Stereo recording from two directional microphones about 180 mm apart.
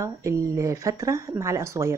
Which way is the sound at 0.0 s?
15° right (ahead or behind).